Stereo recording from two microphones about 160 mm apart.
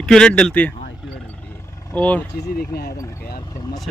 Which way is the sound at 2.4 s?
80° left.